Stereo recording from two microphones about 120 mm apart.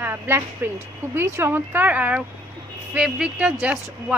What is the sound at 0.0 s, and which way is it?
A woman's voice, 15° right (ahead or behind).